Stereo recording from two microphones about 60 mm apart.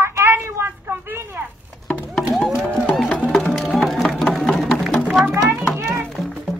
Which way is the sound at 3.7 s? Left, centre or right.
Centre.